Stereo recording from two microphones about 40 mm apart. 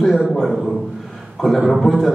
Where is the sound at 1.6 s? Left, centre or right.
Centre.